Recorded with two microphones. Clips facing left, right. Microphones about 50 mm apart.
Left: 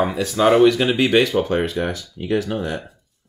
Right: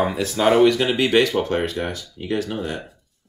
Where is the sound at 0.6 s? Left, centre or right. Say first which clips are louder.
Left 2 dB; centre.